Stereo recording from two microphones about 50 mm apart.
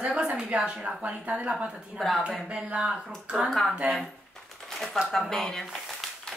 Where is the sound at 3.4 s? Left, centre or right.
Centre.